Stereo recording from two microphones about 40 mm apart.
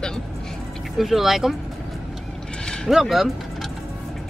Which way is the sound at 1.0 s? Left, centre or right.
Centre.